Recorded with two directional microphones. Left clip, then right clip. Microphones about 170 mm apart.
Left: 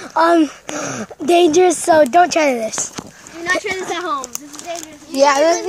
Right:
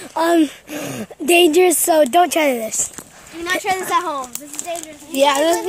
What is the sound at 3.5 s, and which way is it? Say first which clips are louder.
Speech: even; 35° right (ahead or behind).